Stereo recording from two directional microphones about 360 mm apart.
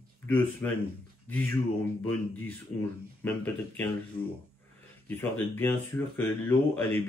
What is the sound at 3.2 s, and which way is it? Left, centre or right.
Speech, centre.